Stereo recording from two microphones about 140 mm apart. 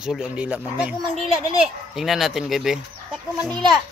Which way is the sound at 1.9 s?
Centre (ahead or behind).